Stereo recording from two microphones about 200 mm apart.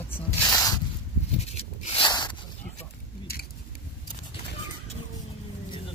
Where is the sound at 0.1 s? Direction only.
15° left (ahead or behind).